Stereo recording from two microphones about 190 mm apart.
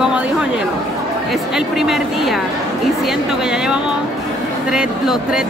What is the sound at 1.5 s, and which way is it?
Speech, centre (ahead or behind).